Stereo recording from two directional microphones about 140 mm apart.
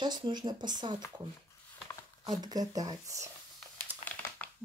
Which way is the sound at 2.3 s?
30° right (ahead or behind).